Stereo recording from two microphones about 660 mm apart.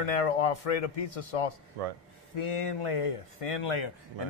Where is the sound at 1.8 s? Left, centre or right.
Right.